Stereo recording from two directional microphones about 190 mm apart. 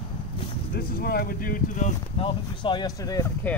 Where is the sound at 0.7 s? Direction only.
55° left (ahead or behind).